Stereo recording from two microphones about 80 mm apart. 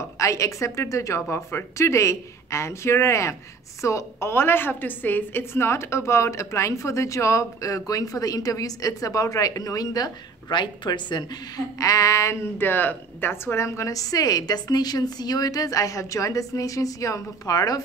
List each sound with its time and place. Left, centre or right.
0.2 s a woman's voice: left
10.5 s a woman's voice: left